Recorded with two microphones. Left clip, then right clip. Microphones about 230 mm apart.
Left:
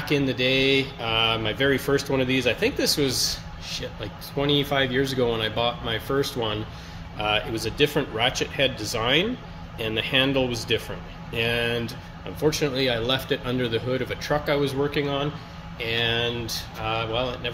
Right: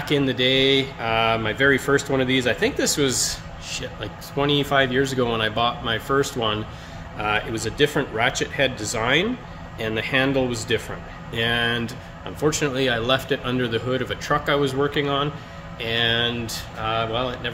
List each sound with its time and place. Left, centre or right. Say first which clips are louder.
0.1 s speech: right 3 dB; centre